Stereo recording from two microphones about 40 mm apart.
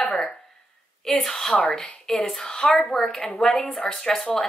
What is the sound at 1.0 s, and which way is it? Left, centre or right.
A woman's voice, centre.